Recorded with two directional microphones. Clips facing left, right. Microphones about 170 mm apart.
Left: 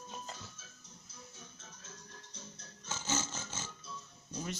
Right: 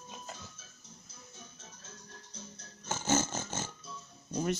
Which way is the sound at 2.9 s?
55° right (ahead or behind).